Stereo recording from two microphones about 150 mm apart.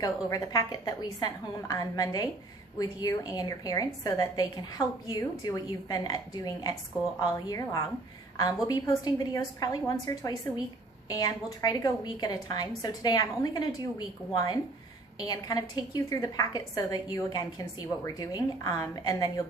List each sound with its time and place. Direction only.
0.0 s a woman's voice: 25° left (ahead or behind)